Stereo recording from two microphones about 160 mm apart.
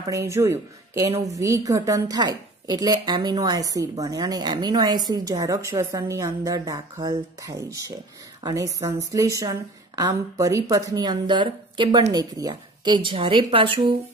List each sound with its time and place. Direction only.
0.0 s a woman's voice: 20° right (ahead or behind)